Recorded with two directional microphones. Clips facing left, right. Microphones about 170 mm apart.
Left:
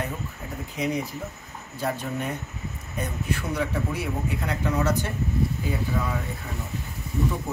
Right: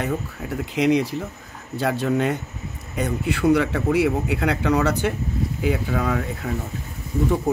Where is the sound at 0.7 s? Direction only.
85° right.